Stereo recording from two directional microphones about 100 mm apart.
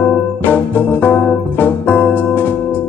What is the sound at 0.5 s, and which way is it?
Organ, 20° left (ahead or behind).